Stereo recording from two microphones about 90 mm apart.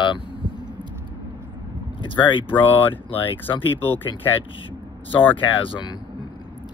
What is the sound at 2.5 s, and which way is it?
Speech, 20° left (ahead or behind).